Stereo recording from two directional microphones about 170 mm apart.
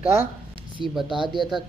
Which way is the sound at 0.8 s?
30° right (ahead or behind).